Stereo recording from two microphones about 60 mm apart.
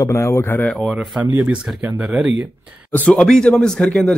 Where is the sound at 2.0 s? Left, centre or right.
Centre.